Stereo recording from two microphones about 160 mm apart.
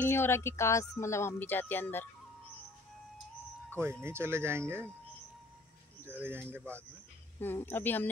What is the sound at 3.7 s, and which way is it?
Speech, 15° right (ahead or behind).